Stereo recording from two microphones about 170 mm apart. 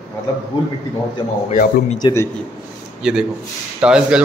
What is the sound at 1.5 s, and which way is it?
Speech, 40° left (ahead or behind).